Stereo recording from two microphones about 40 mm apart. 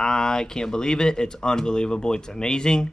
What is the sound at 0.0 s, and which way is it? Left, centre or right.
Speech, centre.